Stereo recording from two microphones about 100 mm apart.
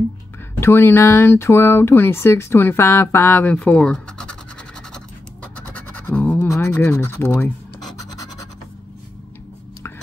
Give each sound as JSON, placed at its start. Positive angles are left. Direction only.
{"t": 0.6, "sound": "speech", "side_deg": 25}
{"t": 5.7, "sound": "scratch", "side_deg": 15}
{"t": 6.4, "sound": "speech", "side_deg": 30}